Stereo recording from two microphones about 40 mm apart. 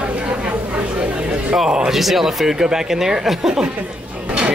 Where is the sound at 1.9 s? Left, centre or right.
Centre.